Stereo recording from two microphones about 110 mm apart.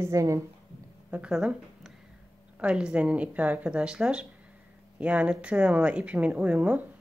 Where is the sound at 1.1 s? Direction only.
10° right (ahead or behind).